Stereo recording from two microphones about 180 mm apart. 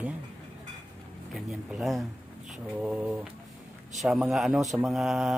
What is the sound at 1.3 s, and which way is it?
Speech, centre (ahead or behind).